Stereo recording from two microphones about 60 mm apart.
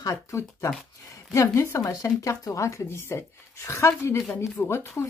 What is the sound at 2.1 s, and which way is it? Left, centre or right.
Speech, left.